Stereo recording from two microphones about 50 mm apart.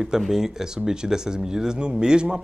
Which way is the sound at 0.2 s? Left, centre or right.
Centre.